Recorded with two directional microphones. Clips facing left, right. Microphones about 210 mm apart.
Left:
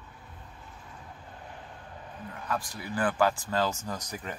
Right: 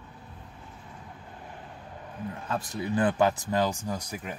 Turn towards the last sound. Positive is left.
turn(degrees=-10)  # may be behind; listen again after turning